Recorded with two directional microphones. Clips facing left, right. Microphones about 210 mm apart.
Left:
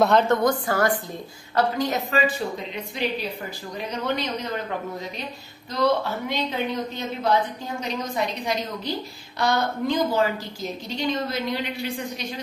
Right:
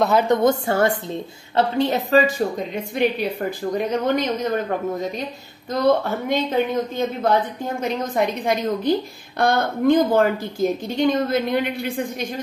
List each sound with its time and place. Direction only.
0.2 s a woman's voice: 20° right (ahead or behind); by 4.6 s 50° right (ahead or behind)
5.7 s speech: 50° right (ahead or behind)